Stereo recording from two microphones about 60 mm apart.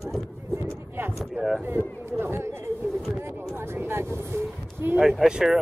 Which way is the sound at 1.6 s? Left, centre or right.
Right.